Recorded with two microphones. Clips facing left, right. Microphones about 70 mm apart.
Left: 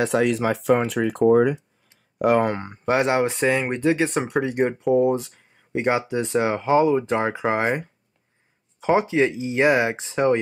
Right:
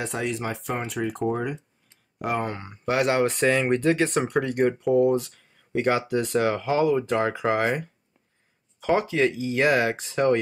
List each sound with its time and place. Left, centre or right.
0.0 s speech: left
2.6 s speech: left
2.9 s speech: left